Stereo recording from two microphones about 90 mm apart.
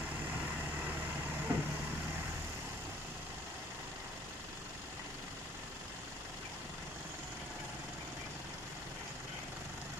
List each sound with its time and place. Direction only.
1.5 s vehicle: 20° right (ahead or behind)